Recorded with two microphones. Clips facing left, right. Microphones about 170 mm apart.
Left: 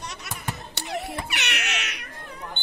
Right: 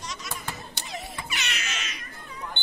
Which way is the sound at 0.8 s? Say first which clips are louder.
Left 6 dB; 65° left (ahead or behind).